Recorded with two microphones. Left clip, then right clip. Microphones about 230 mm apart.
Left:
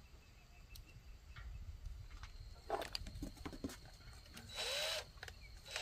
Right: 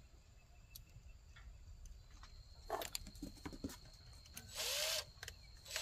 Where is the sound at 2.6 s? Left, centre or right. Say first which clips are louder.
Left 2 dB; left.